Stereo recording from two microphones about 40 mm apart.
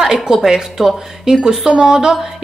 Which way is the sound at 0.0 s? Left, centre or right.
Centre.